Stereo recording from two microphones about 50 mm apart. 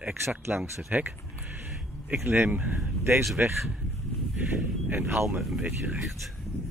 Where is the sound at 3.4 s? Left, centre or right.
Right.